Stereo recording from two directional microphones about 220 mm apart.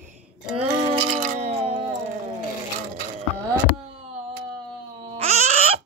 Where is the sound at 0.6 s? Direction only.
25° right (ahead or behind).